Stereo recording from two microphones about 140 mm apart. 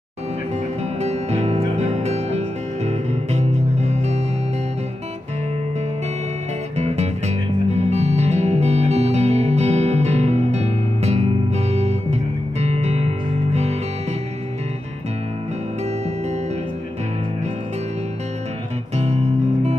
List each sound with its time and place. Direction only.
1.0 s music: 50° right (ahead or behind)
6.8 s music: 50° right (ahead or behind)
18.9 s music: 50° right (ahead or behind)